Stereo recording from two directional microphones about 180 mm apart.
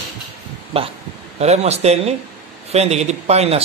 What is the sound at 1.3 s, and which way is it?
A man's voice, 35° right (ahead or behind).